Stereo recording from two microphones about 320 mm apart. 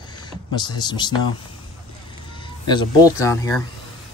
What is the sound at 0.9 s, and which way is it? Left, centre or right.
Speech, centre.